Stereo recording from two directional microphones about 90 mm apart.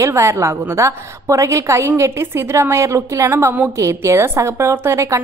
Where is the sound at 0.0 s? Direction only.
30° right (ahead or behind).